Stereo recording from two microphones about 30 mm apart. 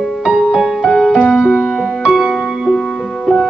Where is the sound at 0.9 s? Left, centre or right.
Centre.